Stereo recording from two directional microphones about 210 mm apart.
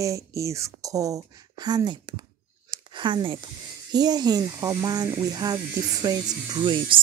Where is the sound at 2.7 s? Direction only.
20° right (ahead or behind).